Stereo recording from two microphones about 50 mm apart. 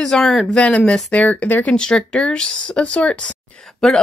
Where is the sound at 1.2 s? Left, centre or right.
Left.